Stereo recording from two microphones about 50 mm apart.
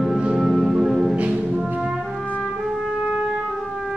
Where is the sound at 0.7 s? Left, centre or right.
Centre.